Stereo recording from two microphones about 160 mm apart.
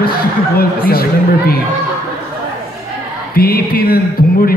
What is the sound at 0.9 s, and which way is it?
Speech, 75° left (ahead or behind).